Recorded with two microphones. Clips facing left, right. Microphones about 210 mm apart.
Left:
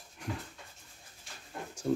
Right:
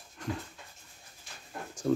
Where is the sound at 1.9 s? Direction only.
10° left (ahead or behind).